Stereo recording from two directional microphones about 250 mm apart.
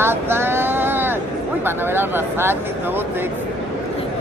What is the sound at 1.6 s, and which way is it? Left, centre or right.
Speech, centre.